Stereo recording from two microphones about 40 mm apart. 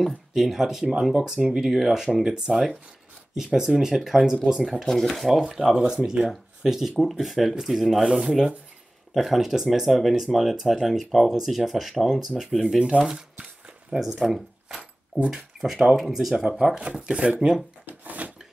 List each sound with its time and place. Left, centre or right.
0.3 s speech: centre
3.5 s speech: centre
4.8 s speech: centre
5.1 s speech: centre
8.0 s speech: centre
9.1 s speech: centre
16.7 s speech: right
17.8 s a sound: right